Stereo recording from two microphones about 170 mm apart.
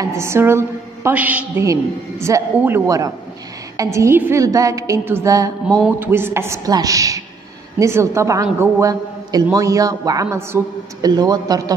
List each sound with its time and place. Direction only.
0.0 s a woman's voice: 15° right (ahead or behind)
5.7 s a sound: centre (ahead or behind)
5.9 s a woman's voice: 15° right (ahead or behind)